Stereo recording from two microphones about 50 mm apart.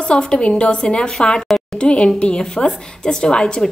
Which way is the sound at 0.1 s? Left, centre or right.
Centre.